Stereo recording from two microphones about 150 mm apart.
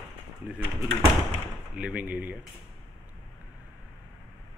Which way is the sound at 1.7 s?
10° right (ahead or behind).